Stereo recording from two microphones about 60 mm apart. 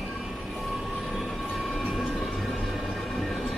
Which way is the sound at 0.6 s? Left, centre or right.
Centre.